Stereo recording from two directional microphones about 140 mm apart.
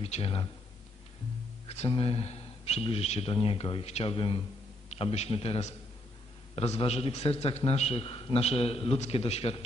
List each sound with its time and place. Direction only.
0.0 s a man's voice: 45° left (ahead or behind)
1.7 s a man's voice: 45° left (ahead or behind)